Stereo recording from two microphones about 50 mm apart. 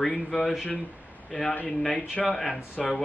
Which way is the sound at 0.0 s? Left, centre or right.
Left.